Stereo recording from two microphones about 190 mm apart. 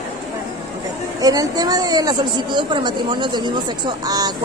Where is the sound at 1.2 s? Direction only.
20° right (ahead or behind).